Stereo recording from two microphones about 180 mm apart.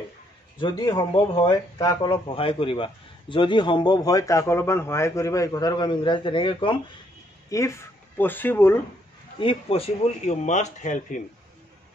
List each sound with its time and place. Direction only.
0.6 s speech: 25° left (ahead or behind)
7.4 s speech: 15° left (ahead or behind)
9.4 s speech: 30° left (ahead or behind)